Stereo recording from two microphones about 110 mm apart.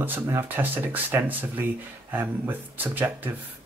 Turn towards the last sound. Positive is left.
turn(degrees=-20)  # may be behind; listen again after turning